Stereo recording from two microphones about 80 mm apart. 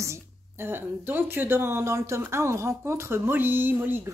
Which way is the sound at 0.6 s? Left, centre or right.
Right.